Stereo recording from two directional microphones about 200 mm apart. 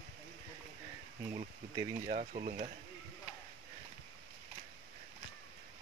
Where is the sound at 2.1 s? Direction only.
35° right (ahead or behind).